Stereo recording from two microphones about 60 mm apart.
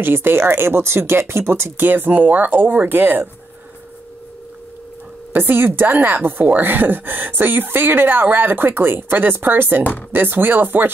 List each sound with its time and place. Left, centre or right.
0.0 s speech: right
5.3 s speech: right